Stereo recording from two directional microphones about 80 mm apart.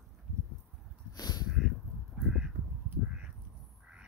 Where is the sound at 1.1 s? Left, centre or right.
Left.